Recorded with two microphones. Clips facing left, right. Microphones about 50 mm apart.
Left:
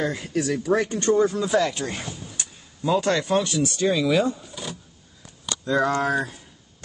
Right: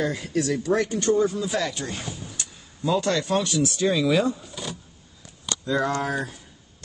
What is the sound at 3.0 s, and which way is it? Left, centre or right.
Speech, left.